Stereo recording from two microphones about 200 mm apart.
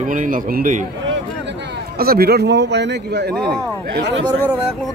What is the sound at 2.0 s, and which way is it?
A man's voice, 50° right (ahead or behind).